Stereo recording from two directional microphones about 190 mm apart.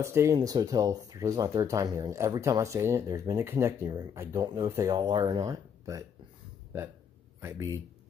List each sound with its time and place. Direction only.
0.0 s speech: 15° right (ahead or behind)
7.3 s speech: 15° right (ahead or behind)